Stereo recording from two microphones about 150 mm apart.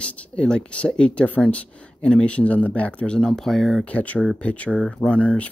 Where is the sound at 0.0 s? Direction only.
10° left (ahead or behind).